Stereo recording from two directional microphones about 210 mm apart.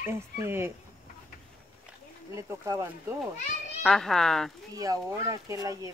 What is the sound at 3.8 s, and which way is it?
Speech, centre (ahead or behind).